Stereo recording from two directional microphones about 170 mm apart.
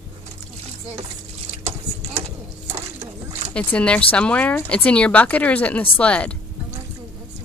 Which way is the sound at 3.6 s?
5° left (ahead or behind).